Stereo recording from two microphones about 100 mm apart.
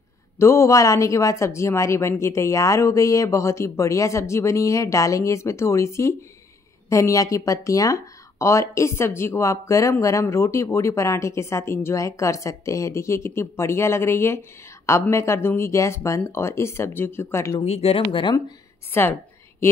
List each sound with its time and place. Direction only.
0.4 s speech: 25° left (ahead or behind)
17.6 s speech: 85° left; by 18.4 s 55° left (ahead or behind)
18.9 s speech: 20° left (ahead or behind)